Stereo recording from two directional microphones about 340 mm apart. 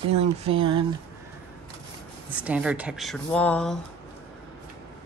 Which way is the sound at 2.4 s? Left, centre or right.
Centre.